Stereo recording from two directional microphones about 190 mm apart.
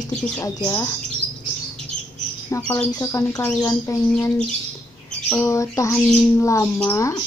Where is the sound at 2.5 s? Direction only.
10° left (ahead or behind).